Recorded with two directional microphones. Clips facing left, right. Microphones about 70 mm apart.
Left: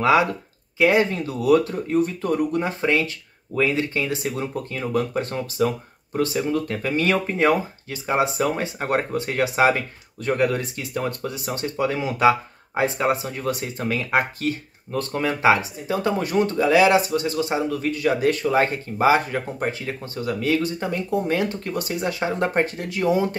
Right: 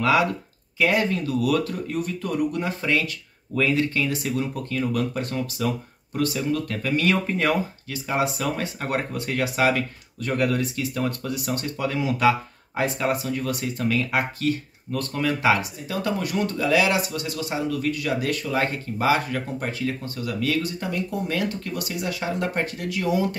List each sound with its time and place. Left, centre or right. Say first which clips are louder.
0.0 s speech: left 3 dB; left